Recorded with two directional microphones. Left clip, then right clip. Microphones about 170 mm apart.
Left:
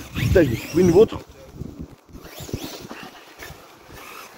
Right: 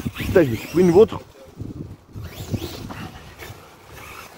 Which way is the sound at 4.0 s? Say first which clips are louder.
Right 1 dB; 40° left (ahead or behind).